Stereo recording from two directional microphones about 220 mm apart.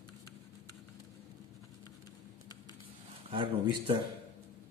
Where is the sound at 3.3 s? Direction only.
25° right (ahead or behind).